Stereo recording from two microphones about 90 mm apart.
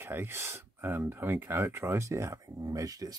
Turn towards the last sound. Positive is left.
turn(degrees=-40)  # may be behind; listen again after turning